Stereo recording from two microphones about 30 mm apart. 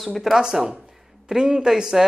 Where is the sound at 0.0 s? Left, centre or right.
Centre.